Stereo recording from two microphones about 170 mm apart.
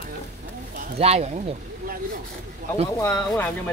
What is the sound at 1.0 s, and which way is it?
Speech, 40° right (ahead or behind).